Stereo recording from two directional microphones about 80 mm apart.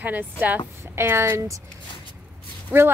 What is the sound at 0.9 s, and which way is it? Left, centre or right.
Speech, right.